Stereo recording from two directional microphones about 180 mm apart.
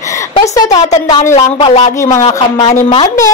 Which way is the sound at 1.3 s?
35° left (ahead or behind).